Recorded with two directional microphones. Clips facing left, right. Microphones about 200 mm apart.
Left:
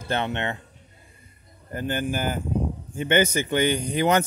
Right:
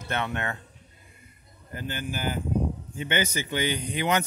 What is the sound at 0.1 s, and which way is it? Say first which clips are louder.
Speech: left 4 dB; 30° left (ahead or behind).